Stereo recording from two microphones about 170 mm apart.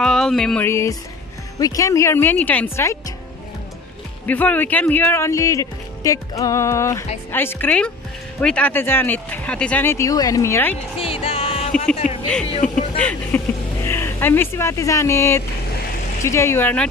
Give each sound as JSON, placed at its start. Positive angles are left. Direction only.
{"t": 0.0, "sound": "speech", "side_deg": 5}
{"t": 0.7, "sound": "speech", "side_deg": 15}
{"t": 4.3, "sound": "speech", "side_deg": 10}
{"t": 11.0, "sound": "music", "side_deg": 35}
{"t": 12.9, "sound": "speech", "side_deg": 5}